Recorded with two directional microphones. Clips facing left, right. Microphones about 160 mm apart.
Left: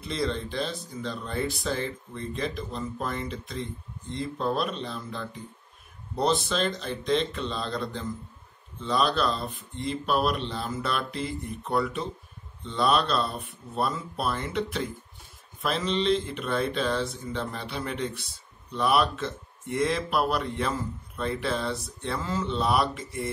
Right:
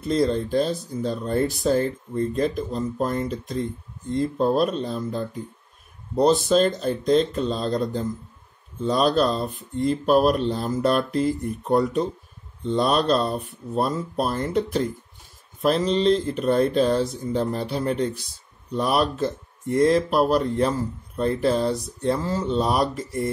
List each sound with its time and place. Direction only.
0.0 s speech: 45° right (ahead or behind)